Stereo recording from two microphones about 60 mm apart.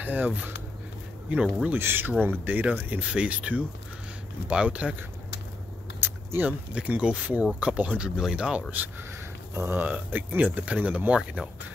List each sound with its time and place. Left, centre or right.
0.0 s speech: right
1.3 s speech: centre
1.7 s speech: right
5.9 s a sound: right
6.7 s speech: centre
8.2 s speech: centre
9.6 s speech: right
9.8 s speech: right